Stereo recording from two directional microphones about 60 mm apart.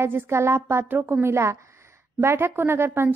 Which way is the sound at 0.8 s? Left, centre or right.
Right.